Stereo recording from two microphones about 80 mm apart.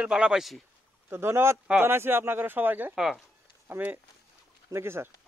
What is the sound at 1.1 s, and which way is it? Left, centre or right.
Speech, right.